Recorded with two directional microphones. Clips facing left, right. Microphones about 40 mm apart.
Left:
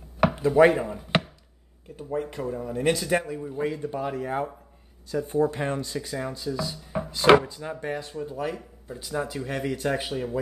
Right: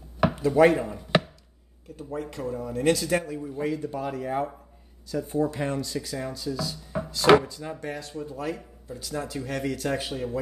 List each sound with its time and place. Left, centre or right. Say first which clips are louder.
0.5 s a man's voice: left 1 dB; centre
5.0 s speech: left 2 dB; left
5.9 s a man's voice: left 1 dB; centre
10.1 s speech: left 1 dB; centre